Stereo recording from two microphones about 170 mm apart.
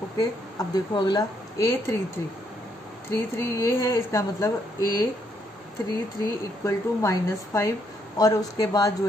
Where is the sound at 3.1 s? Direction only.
15° left (ahead or behind).